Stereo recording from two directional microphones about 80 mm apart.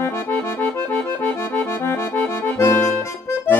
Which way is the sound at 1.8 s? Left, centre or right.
Left.